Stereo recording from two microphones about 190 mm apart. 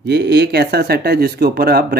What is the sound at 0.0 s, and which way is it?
Speech, 65° right (ahead or behind).